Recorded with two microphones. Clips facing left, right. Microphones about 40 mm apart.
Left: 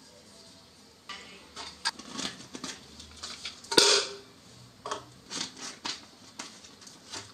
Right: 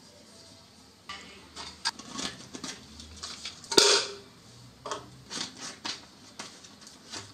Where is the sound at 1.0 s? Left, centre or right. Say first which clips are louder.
Right 1 dB; centre.